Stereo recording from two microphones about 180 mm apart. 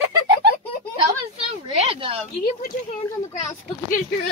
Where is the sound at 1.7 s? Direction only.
35° right (ahead or behind).